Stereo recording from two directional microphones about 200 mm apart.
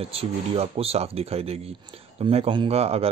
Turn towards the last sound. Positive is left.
turn(degrees=-30)  # may be behind; listen again after turning